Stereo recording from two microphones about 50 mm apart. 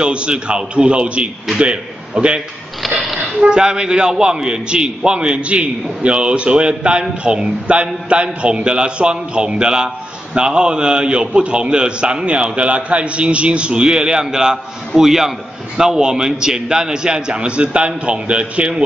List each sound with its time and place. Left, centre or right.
0.0 s a man's voice: right